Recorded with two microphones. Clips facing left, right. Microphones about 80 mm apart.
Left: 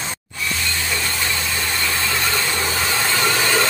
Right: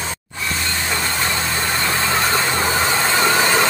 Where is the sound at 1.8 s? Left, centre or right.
Right.